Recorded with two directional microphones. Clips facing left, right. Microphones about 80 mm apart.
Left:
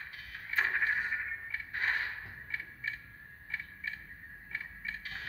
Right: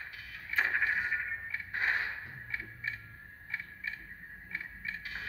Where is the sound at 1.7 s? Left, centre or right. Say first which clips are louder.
Right 1 dB; centre.